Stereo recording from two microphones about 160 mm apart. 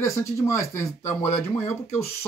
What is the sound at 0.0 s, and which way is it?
Speech, 20° left (ahead or behind).